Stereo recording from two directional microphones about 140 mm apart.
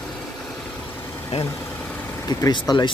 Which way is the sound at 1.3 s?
50° left (ahead or behind).